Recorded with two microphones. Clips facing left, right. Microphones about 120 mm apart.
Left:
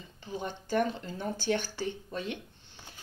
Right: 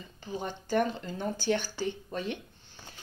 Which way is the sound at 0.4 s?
45° right (ahead or behind).